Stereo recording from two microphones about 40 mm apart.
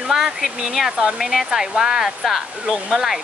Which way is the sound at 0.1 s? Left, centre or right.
Centre.